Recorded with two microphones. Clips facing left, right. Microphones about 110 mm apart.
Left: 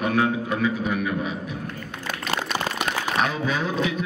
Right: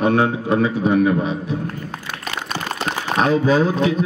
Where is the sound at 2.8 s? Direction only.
35° right (ahead or behind).